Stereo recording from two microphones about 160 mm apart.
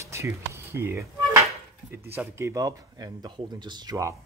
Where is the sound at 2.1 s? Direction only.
15° right (ahead or behind).